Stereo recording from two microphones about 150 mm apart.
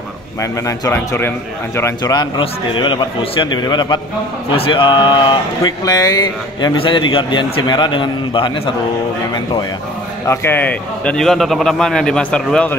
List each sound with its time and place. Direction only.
0.4 s a man's voice: 20° left (ahead or behind)
10.2 s a man's voice: 15° left (ahead or behind)